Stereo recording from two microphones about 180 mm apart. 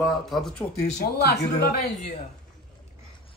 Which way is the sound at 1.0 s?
60° left (ahead or behind).